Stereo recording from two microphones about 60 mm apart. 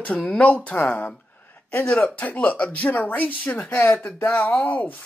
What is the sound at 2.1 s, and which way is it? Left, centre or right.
Speech, left.